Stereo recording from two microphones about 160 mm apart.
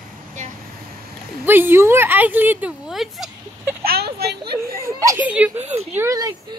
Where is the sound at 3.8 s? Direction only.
85° right.